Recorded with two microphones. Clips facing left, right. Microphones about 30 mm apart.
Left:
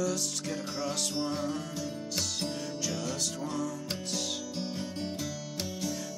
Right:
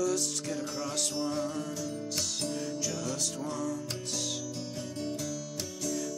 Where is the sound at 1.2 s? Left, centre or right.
Centre.